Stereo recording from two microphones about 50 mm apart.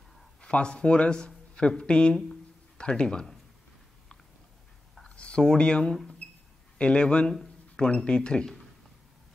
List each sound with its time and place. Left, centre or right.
0.4 s a man's voice: centre
5.1 s a man's voice: left